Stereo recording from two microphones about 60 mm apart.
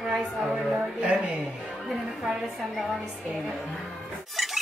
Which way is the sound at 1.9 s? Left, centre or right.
Centre.